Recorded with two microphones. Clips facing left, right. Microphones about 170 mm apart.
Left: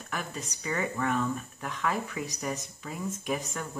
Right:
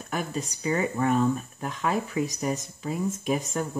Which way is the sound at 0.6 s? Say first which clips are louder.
Right 5 dB; 25° right (ahead or behind).